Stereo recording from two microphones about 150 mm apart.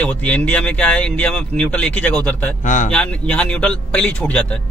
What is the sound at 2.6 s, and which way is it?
Speech, 55° left (ahead or behind).